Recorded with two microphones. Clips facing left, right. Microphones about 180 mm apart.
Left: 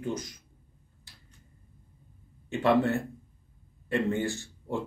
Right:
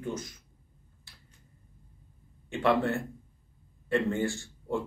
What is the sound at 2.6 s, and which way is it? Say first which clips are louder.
A man's voice: left 2 dB; 20° left (ahead or behind).